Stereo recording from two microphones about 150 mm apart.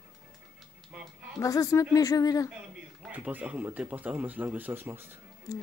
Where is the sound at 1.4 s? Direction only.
20° left (ahead or behind).